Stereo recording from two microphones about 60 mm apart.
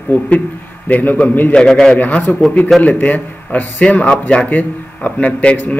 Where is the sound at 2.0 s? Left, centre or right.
Left.